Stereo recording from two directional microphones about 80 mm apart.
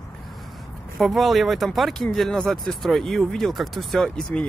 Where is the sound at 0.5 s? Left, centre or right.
Centre.